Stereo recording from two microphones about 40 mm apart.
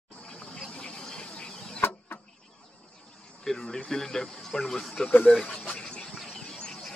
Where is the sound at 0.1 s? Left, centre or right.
Left.